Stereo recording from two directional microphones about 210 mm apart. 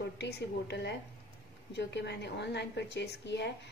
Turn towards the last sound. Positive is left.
turn(degrees=55)  # may be behind; listen again after turning